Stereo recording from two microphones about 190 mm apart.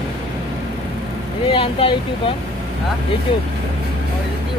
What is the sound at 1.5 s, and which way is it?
Speech, 30° left (ahead or behind).